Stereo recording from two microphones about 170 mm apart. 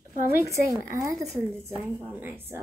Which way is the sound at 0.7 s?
20° right (ahead or behind).